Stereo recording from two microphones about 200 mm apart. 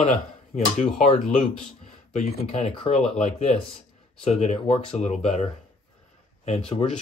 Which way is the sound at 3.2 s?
30° left (ahead or behind).